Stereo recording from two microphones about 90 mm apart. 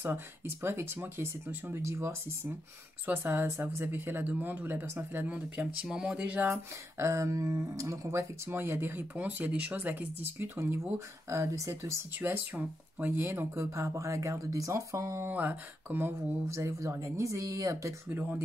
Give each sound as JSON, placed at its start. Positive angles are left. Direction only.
{"t": 0.0, "sound": "speech", "side_deg": -25}
{"t": 6.5, "sound": "speech", "side_deg": -35}
{"t": 12.2, "sound": "speech", "side_deg": -20}